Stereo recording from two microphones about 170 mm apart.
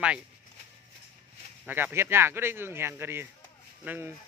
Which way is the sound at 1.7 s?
10° right (ahead or behind).